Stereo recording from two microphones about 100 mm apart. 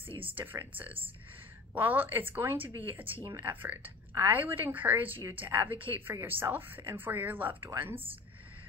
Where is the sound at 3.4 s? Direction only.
20° right (ahead or behind).